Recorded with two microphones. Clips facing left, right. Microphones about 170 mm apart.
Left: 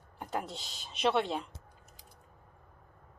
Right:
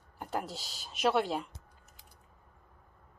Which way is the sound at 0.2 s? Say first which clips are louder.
Even; centre (ahead or behind).